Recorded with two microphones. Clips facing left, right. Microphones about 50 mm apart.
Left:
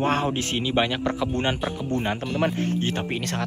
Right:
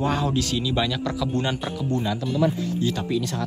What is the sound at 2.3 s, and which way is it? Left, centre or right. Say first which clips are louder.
Speech: right 2 dB; left.